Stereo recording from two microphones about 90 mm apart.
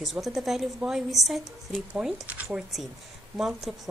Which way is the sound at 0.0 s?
Centre (ahead or behind).